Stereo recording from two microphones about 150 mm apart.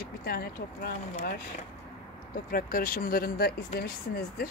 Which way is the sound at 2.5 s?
75° left (ahead or behind).